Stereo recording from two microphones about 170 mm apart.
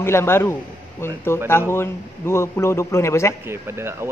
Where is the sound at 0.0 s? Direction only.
15° left (ahead or behind).